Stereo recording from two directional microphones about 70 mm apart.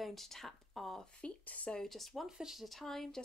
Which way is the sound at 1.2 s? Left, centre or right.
Centre.